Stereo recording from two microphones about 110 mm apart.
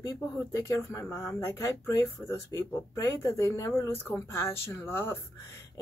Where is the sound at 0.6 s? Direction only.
30° left (ahead or behind).